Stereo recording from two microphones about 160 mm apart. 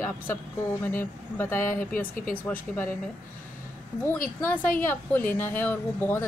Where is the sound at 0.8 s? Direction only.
15° left (ahead or behind).